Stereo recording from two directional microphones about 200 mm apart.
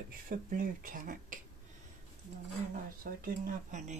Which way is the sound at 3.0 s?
45° right (ahead or behind).